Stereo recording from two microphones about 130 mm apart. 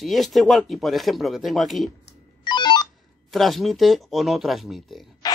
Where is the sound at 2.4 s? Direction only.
35° left (ahead or behind).